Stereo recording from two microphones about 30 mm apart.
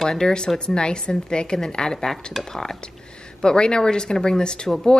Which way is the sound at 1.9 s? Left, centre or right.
Centre.